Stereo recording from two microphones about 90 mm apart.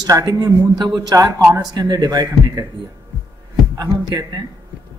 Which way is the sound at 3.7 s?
40° right (ahead or behind).